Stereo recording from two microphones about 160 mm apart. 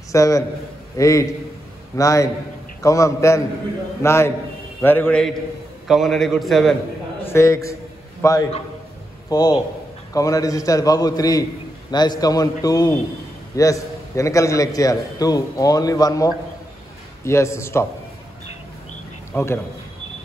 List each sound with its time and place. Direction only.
0.1 s a man's voice: 20° left (ahead or behind); by 6.8 s centre (ahead or behind)
7.2 s a man's voice: 20° left (ahead or behind)
19.3 s a man's voice: 15° left (ahead or behind)